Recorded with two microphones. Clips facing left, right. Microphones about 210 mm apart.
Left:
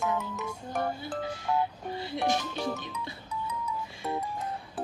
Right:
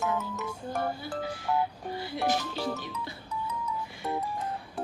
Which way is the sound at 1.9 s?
25° left (ahead or behind).